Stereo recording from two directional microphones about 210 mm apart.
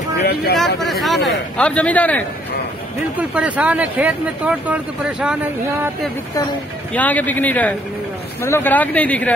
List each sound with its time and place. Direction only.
0.2 s speech: 50° left (ahead or behind)
0.8 s speech: centre (ahead or behind)
3.2 s speech: 5° right (ahead or behind)
6.9 s speech: 5° left (ahead or behind)